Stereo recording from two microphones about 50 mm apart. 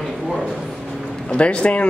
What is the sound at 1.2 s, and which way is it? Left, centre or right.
Speech, left.